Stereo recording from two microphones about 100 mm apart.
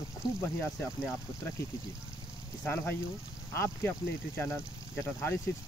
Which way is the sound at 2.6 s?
20° left (ahead or behind).